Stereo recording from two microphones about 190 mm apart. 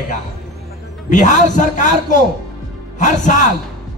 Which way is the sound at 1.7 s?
40° left (ahead or behind).